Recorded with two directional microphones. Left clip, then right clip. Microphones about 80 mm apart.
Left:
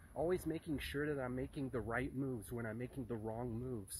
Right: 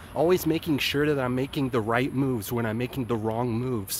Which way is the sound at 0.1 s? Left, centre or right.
Right.